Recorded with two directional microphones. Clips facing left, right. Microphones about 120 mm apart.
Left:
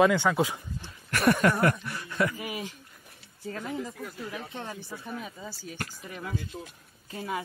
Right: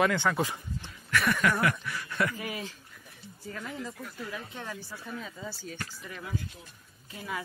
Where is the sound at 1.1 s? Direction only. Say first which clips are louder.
Left 4 dB; 45° left (ahead or behind).